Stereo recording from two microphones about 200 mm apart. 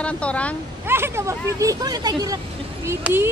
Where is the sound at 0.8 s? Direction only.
10° right (ahead or behind).